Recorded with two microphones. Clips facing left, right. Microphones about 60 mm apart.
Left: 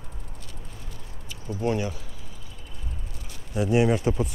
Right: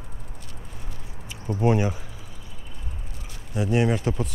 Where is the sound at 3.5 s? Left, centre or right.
Centre.